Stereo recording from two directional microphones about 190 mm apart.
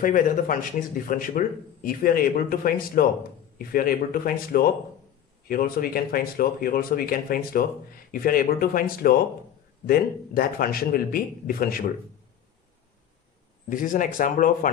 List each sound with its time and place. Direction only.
0.0 s speech: 45° left (ahead or behind)
13.7 s speech: 45° left (ahead or behind)